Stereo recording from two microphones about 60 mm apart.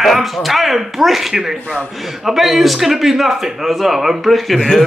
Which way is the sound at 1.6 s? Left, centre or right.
Left.